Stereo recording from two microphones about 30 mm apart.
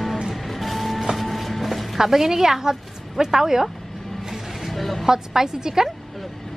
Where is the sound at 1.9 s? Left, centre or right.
Centre.